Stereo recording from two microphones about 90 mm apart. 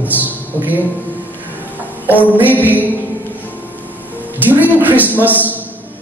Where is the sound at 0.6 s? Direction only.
20° right (ahead or behind).